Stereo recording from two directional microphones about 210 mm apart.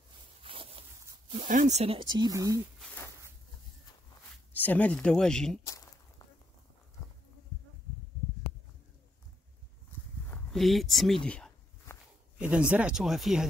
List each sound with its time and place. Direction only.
0.4 s zipper: 25° right (ahead or behind)
1.5 s speech: 35° right (ahead or behind)
2.1 s speech: 15° right (ahead or behind)
4.5 s speech: 10° left (ahead or behind)
5.7 s a sound: 15° left (ahead or behind)
10.2 s a sound: 5° left (ahead or behind)
12.4 s speech: 5° right (ahead or behind)